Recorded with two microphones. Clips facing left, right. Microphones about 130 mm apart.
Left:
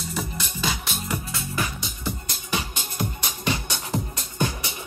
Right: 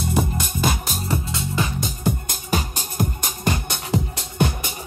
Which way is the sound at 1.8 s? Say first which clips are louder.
Right 7 dB; 50° right (ahead or behind).